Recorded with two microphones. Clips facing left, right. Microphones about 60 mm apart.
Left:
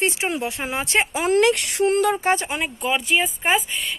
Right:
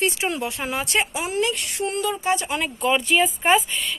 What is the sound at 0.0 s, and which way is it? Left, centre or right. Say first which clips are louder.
Speech: left 1 dB; left.